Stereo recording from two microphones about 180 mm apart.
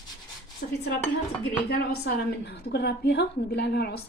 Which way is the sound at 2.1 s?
65° left (ahead or behind).